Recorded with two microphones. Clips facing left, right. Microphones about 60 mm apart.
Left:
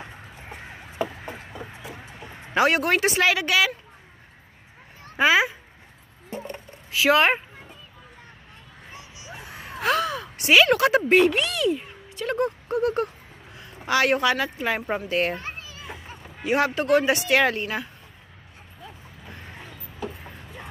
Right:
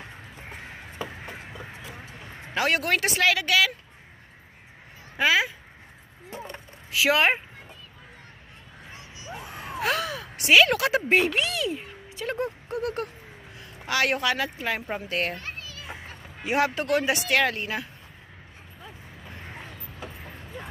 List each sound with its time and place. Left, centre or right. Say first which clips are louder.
2.5 s speech: left 4 dB; centre
5.2 s speech: left 3 dB; left
6.9 s speech: left 3 dB; centre
9.8 s gasp: left 4 dB; centre
10.4 s speech: left 2 dB; centre
12.7 s speech: left 6 dB; centre
15.3 s children playing: left 2 dB; left
16.5 s speech: left 3 dB; centre